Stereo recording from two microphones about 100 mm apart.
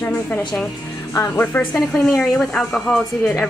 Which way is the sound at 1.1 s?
35° left (ahead or behind).